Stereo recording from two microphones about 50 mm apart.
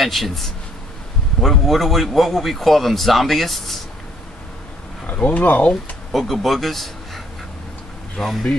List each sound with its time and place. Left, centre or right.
0.0 s a man's voice: centre
5.0 s speech: left
6.1 s a man's voice: centre
8.2 s a man's voice: centre